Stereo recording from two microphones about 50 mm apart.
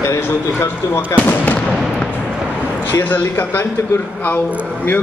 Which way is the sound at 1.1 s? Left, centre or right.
Left.